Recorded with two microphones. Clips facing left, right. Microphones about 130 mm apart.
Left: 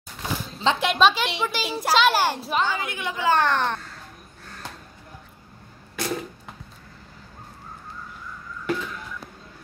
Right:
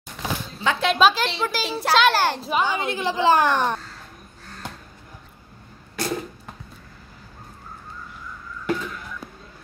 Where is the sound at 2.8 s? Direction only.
30° right (ahead or behind).